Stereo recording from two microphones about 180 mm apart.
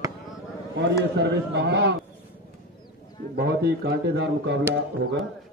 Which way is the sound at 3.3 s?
60° right (ahead or behind).